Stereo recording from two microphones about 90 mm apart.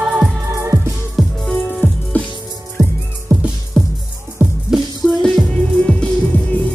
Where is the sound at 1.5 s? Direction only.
15° left (ahead or behind).